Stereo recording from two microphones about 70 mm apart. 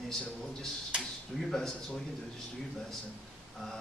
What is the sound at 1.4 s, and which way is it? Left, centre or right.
Speech, centre.